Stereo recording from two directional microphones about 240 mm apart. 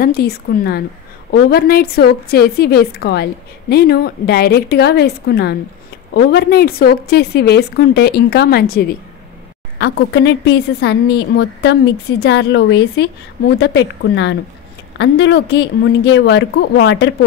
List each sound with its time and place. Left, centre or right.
0.0 s a woman's voice: left